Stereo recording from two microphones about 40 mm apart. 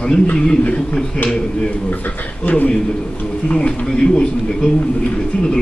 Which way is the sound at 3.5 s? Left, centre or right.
Left.